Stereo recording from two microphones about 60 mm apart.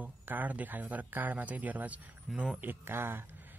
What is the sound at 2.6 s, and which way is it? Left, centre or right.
Speech, right.